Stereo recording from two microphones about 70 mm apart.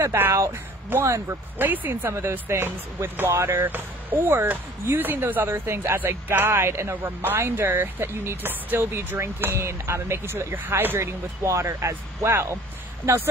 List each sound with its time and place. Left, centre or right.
0.0 s speech: right
1.6 s speech: right